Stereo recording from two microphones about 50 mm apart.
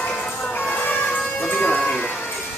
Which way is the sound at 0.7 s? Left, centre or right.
Left.